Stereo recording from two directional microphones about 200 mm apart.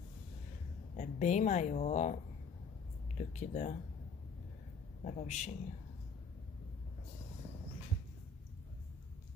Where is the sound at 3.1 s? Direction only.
35° left (ahead or behind).